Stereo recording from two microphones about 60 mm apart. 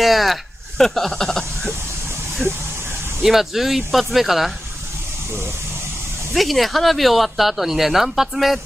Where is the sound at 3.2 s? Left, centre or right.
Centre.